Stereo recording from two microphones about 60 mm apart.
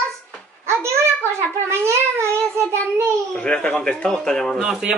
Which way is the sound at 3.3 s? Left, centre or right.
Centre.